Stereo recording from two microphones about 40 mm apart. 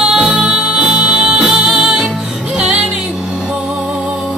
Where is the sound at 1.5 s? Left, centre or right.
Centre.